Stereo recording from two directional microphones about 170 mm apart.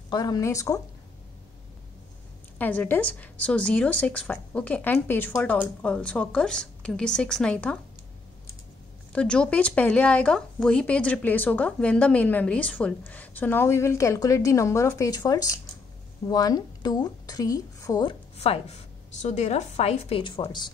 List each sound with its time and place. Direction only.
0.1 s speech: 25° left (ahead or behind)
2.6 s speech: 10° left (ahead or behind)
9.1 s a woman's voice: 5° left (ahead or behind); by 18.1 s 20° left (ahead or behind)
18.4 s a woman's voice: 35° left (ahead or behind)